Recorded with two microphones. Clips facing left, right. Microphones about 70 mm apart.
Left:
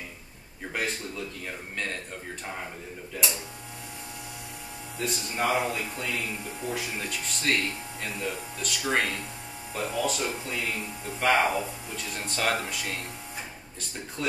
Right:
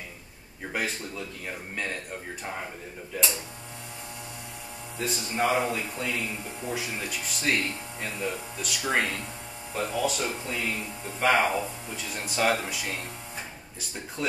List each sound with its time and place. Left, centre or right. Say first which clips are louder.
0.7 s speech: even; centre
4.9 s speech: right 1 dB; centre